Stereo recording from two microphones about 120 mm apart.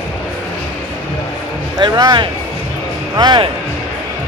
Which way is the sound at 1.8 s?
35° right (ahead or behind).